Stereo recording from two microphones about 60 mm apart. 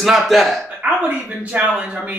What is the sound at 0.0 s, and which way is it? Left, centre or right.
Speech, centre.